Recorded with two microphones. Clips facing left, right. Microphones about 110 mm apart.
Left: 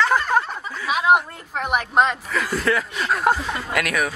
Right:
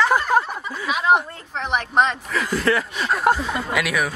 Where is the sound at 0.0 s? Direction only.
5° right (ahead or behind).